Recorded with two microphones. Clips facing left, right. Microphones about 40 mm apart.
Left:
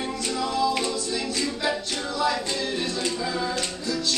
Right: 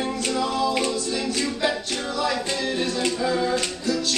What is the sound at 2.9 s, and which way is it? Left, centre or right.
Music, right.